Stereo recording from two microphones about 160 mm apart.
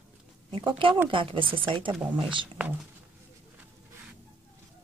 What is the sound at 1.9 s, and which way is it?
Speech, 10° right (ahead or behind).